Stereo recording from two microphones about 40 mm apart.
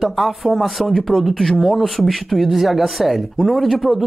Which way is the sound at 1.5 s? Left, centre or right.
Centre.